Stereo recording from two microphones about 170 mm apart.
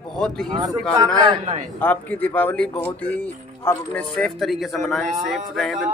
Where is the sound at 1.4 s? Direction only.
45° right (ahead or behind).